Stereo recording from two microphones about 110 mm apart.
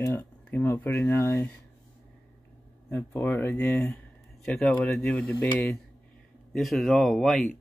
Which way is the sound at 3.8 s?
5° left (ahead or behind).